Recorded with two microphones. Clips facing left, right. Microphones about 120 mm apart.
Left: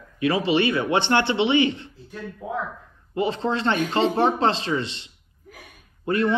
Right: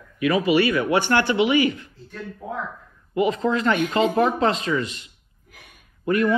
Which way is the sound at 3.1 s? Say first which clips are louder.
Right 3 dB; 30° left (ahead or behind).